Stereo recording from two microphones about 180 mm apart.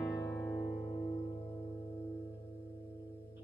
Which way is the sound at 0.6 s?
35° left (ahead or behind).